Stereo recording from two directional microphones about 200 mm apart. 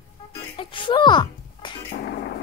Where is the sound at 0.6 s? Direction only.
25° left (ahead or behind).